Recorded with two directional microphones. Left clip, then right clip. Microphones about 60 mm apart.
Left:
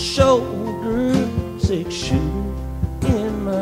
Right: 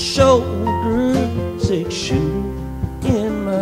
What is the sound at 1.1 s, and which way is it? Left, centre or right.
Music, left.